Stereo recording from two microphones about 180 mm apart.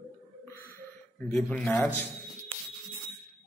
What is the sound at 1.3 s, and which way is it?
Speech, 5° left (ahead or behind).